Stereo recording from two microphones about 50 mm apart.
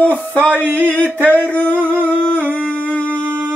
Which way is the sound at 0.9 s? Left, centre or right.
Left.